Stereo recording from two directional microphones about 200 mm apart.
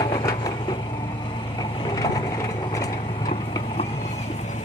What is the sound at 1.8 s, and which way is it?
Wood, 20° left (ahead or behind).